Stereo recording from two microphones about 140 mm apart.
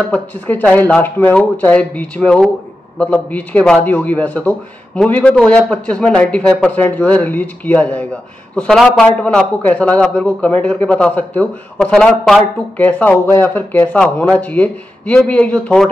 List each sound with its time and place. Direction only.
0.1 s a man's voice: 10° left (ahead or behind)